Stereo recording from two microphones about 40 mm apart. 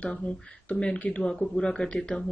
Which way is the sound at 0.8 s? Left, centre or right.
Left.